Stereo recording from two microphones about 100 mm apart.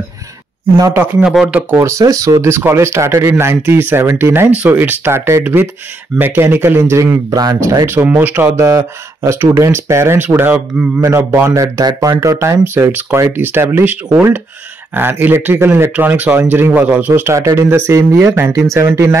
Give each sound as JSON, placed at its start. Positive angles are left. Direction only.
{"t": 1.2, "sound": "speech", "side_deg": -5}
{"t": 1.8, "sound": "speech", "side_deg": -30}
{"t": 7.0, "sound": "speech", "side_deg": -35}
{"t": 7.6, "sound": "speech", "side_deg": -25}
{"t": 8.5, "sound": "speech", "side_deg": -35}